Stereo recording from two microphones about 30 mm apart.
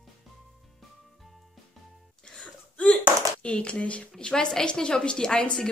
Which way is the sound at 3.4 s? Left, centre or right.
Left.